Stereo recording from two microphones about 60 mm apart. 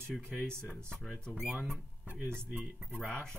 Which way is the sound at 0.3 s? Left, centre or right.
Centre.